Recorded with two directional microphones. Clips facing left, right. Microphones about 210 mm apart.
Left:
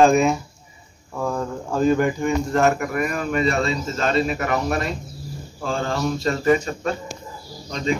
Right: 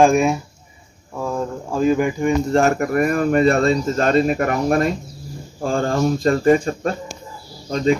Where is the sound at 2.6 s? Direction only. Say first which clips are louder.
Right 3 dB; 45° right (ahead or behind).